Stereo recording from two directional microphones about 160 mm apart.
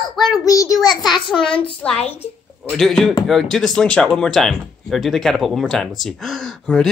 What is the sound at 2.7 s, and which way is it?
Speech, 5° left (ahead or behind).